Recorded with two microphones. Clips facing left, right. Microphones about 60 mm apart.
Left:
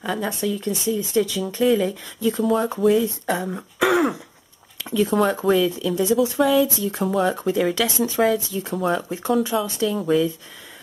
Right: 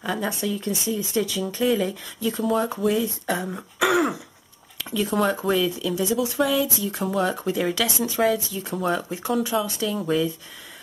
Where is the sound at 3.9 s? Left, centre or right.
Centre.